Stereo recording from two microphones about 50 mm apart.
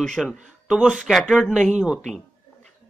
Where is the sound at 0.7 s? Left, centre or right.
Centre.